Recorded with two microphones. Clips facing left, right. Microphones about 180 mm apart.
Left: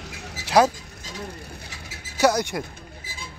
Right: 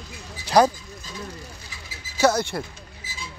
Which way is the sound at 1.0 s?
65° left (ahead or behind).